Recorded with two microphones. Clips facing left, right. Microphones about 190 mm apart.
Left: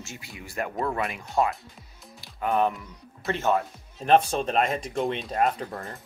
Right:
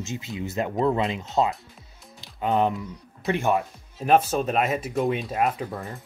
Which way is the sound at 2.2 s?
20° right (ahead or behind).